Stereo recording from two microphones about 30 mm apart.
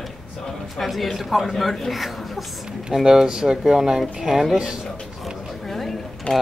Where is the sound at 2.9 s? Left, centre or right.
Centre.